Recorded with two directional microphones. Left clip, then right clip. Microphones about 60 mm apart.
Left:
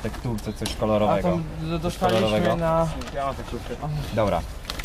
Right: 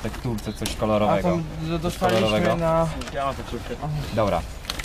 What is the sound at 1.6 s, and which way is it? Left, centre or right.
Speech, right.